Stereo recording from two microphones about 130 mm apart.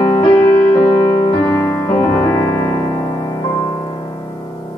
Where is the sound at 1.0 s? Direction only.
35° left (ahead or behind).